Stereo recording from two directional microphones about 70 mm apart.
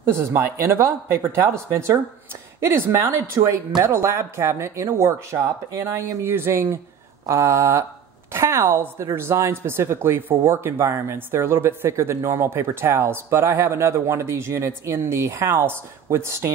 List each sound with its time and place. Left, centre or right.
0.0 s speech: right